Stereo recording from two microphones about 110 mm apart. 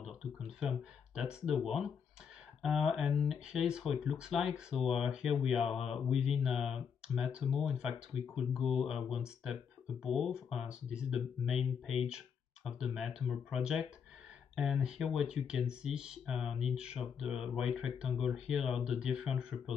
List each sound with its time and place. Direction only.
0.0 s speech: 5° right (ahead or behind)